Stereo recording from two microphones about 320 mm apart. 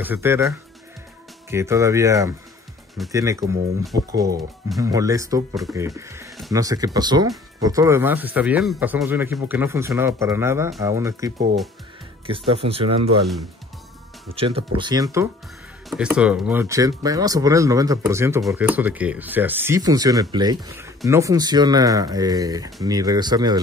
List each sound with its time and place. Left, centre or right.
0.0 s speech: centre
14.3 s speech: centre